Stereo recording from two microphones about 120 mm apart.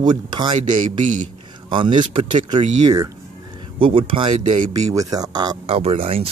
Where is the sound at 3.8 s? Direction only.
50° right (ahead or behind).